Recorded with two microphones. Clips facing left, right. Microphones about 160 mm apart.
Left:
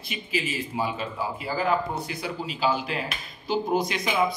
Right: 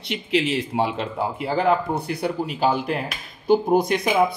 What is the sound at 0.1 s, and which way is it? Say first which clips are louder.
Speech: right 8 dB; 70° right (ahead or behind).